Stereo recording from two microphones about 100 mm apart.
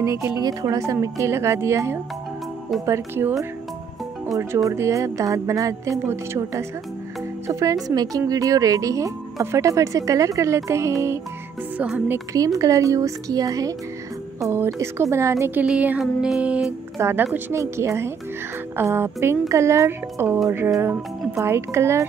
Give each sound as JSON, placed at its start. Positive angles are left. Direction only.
{"t": 0.0, "sound": "speech", "side_deg": -30}
{"t": 0.4, "sound": "speech", "side_deg": -40}
{"t": 12.5, "sound": "speech", "side_deg": -35}
{"t": 14.8, "sound": "speech", "side_deg": -30}
{"t": 15.6, "sound": "music", "side_deg": -10}
{"t": 16.3, "sound": "music", "side_deg": -10}
{"t": 17.0, "sound": "speech", "side_deg": -20}